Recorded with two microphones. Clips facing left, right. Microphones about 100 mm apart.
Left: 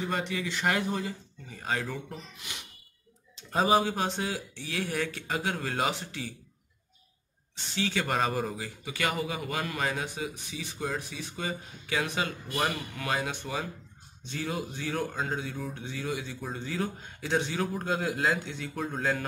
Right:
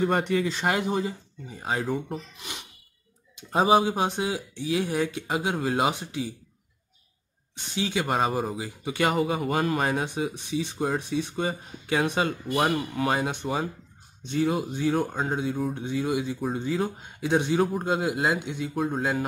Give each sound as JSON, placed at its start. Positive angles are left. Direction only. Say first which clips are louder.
{"t": 0.0, "sound": "speech", "louder": "right 8 dB", "side_deg": -50}
{"t": 0.5, "sound": "speech", "louder": "right 3 dB", "side_deg": -25}
{"t": 3.3, "sound": "speech", "louder": "right 4 dB", "side_deg": -15}
{"t": 7.7, "sound": "speech", "louder": "right 3 dB", "side_deg": -15}
{"t": 8.8, "sound": "speech", "louder": "right 7 dB", "side_deg": -30}